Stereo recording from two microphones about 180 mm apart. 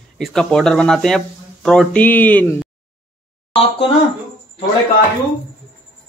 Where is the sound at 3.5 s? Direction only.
30° left (ahead or behind).